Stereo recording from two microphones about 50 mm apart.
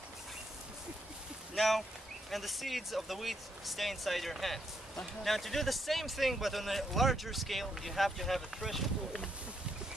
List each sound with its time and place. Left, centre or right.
1.5 s speech: centre